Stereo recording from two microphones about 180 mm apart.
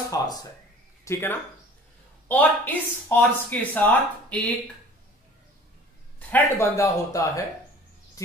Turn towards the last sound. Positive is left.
turn(degrees=20)  # may be behind; listen again after turning